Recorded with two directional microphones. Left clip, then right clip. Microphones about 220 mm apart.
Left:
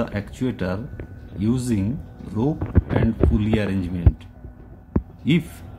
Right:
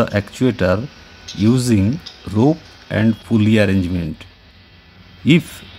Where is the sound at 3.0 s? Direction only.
30° right (ahead or behind).